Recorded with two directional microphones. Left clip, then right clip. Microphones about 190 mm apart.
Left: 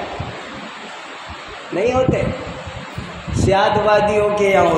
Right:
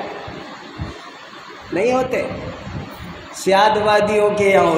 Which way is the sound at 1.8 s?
25° right (ahead or behind).